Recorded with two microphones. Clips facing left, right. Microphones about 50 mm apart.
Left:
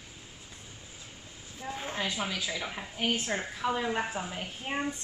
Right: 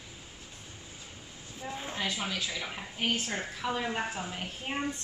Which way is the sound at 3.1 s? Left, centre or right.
Centre.